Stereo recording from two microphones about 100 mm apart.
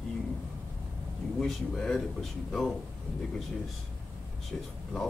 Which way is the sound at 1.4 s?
5° left (ahead or behind).